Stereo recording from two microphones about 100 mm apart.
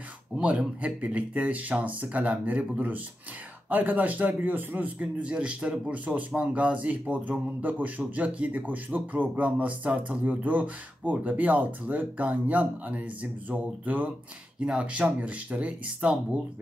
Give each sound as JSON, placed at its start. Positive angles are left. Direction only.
{"t": 0.4, "sound": "a man's voice", "side_deg": -10}